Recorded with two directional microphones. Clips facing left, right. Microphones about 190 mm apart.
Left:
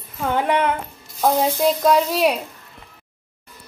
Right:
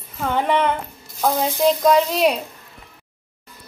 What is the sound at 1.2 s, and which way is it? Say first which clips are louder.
Speech: left 1 dB; 5° left (ahead or behind).